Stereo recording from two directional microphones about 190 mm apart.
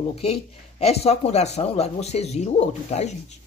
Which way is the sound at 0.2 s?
35° left (ahead or behind).